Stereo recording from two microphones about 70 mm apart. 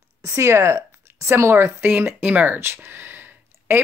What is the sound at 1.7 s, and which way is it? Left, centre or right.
Speech, right.